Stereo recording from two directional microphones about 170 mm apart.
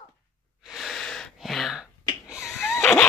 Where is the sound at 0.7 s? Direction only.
Centre (ahead or behind).